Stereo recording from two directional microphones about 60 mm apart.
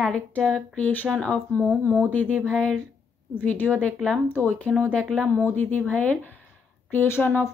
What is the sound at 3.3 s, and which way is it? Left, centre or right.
A woman's voice, left.